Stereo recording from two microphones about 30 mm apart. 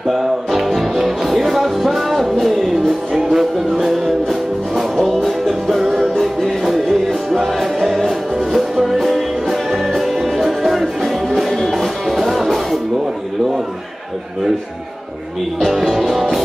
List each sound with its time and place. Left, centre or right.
0.5 s music: centre
6.1 s music: centre
15.8 s music: centre